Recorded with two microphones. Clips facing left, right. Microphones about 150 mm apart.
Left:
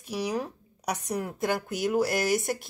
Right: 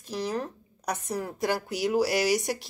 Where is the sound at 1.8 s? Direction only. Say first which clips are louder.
Right 1 dB; centre (ahead or behind).